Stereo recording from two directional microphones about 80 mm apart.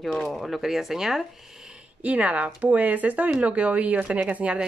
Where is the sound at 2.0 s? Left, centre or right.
Centre.